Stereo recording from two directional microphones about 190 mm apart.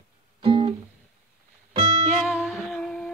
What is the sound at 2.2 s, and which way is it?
Humming, centre (ahead or behind).